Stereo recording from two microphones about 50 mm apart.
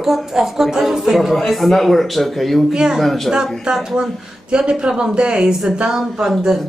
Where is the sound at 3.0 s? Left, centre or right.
Centre.